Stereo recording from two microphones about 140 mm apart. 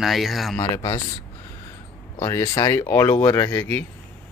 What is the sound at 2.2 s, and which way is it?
Speech, 30° left (ahead or behind).